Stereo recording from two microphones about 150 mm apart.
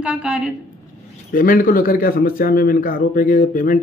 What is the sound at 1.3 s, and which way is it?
Speech, 65° left (ahead or behind).